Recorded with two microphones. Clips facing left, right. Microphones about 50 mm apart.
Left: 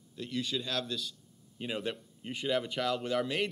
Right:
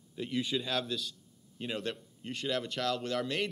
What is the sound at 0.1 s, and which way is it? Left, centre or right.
A man's voice, centre.